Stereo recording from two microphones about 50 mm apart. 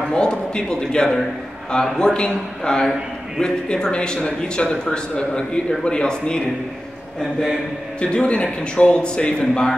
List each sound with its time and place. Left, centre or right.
0.1 s a man's voice: centre
8.0 s a man's voice: centre